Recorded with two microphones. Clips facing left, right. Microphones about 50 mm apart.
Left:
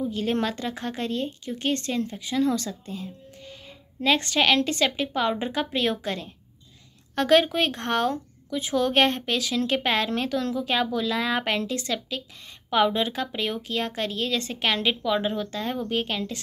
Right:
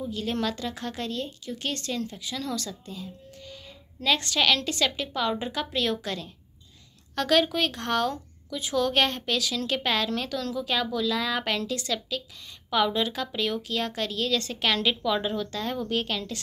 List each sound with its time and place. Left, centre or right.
0.1 s a woman's voice: left